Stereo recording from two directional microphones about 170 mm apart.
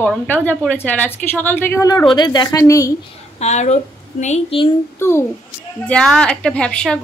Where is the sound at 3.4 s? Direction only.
40° left (ahead or behind).